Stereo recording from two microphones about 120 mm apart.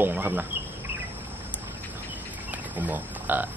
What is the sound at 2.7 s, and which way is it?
Speech, 15° right (ahead or behind).